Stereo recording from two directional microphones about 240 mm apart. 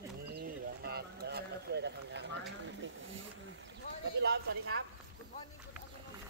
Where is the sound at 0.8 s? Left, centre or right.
Right.